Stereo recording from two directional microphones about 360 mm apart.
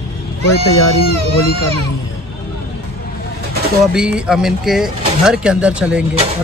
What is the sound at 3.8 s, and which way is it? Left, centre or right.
Speech, centre.